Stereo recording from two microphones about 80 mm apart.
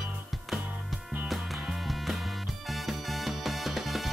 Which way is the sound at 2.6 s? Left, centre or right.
Centre.